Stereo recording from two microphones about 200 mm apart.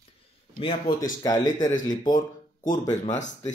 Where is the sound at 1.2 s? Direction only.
15° left (ahead or behind).